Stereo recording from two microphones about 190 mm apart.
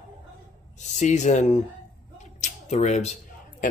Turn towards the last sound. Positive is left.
turn(degrees=35)  # may be behind; listen again after turning